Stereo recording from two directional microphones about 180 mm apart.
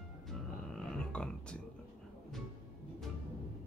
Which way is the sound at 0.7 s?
5° left (ahead or behind).